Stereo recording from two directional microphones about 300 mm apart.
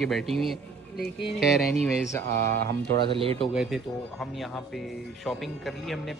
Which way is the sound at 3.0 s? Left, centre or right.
Centre.